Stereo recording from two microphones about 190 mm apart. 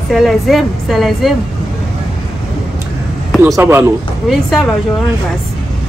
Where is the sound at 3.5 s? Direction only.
15° right (ahead or behind).